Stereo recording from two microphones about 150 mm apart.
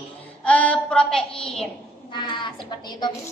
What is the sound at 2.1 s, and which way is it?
A woman's voice, 30° left (ahead or behind).